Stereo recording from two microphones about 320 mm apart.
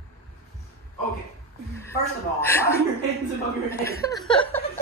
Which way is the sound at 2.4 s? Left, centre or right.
Centre.